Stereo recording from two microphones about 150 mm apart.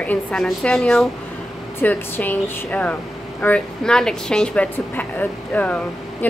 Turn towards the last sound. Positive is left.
turn(degrees=10)  # may be behind; listen again after turning